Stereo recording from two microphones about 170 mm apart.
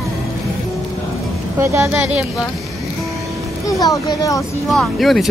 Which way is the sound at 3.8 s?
20° left (ahead or behind).